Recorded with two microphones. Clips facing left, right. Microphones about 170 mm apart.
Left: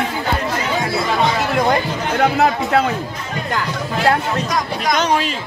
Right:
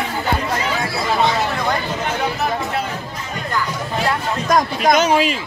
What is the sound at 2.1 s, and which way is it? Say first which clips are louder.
Speech: left 9 dB; 90° left.